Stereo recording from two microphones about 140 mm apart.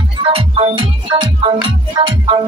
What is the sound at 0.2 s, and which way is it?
Music, 40° right (ahead or behind).